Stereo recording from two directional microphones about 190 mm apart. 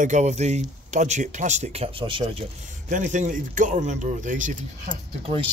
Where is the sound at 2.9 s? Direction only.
40° right (ahead or behind).